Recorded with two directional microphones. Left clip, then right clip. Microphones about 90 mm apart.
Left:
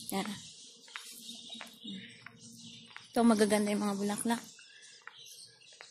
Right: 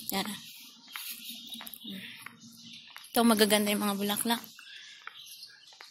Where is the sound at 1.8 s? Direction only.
35° left (ahead or behind).